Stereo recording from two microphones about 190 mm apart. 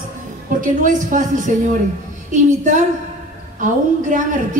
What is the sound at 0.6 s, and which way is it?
A woman's voice, 45° right (ahead or behind).